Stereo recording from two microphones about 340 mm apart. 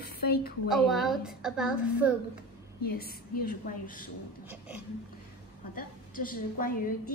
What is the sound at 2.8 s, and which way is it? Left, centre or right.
A woman's voice, left.